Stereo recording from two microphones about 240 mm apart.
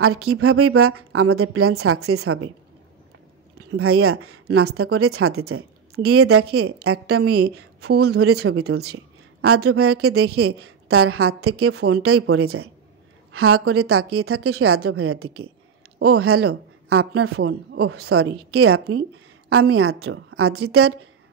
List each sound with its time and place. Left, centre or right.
0.0 s a woman's voice: right
3.5 s a woman's voice: right